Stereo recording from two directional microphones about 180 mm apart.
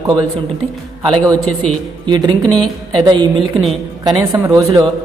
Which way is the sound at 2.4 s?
5° left (ahead or behind).